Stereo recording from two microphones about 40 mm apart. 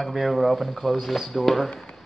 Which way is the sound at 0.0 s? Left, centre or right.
Centre.